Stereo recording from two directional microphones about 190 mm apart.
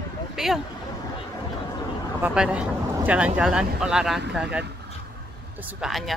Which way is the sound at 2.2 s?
5° right (ahead or behind).